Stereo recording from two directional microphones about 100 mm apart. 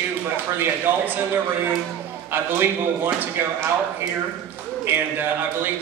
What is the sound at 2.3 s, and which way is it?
A man's voice, 20° right (ahead or behind).